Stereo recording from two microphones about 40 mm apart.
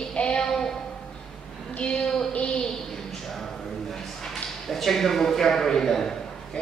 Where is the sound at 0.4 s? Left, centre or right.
Centre.